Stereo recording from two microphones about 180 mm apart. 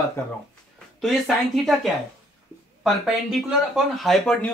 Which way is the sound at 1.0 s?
Centre (ahead or behind).